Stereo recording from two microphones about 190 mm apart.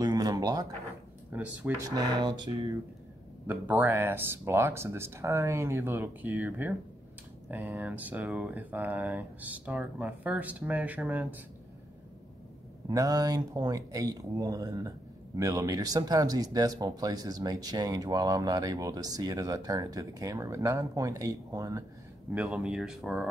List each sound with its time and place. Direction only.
0.0 s a sound: 20° right (ahead or behind)
1.3 s speech: 5° right (ahead or behind)
1.9 s speech: 20° right (ahead or behind)
3.4 s speech: 10° right (ahead or behind)
12.8 s speech: 20° right (ahead or behind)
22.3 s speech: 5° right (ahead or behind)